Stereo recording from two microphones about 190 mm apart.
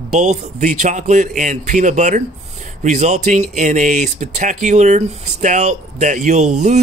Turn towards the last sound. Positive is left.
turn(degrees=-40)  # may be behind; listen again after turning